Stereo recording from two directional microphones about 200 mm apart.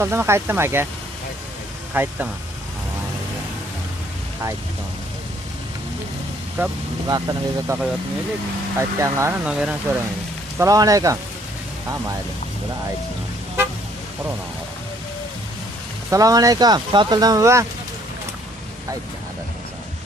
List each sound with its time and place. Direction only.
0.0 s speech: 15° right (ahead or behind)
2.0 s speech: 10° right (ahead or behind)
6.6 s speech: 10° right (ahead or behind)
16.1 s speech: 15° right (ahead or behind)